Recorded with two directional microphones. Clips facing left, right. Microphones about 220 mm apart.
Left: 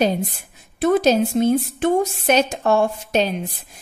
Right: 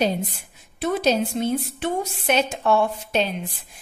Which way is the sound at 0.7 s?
45° left (ahead or behind).